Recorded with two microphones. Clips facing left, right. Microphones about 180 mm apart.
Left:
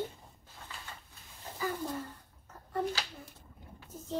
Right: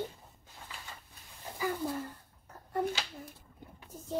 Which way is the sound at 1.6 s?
10° right (ahead or behind).